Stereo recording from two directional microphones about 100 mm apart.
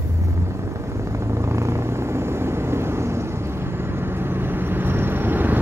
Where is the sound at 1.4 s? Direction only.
30° right (ahead or behind).